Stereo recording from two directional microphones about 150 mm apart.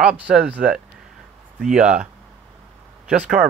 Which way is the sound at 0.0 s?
10° right (ahead or behind).